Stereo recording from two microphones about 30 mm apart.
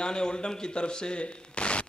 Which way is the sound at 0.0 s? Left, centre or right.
Left.